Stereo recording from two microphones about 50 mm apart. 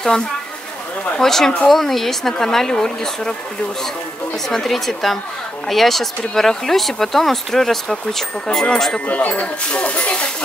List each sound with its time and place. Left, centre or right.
1.2 s speech: centre
4.5 s speech: centre
9.0 s speech: left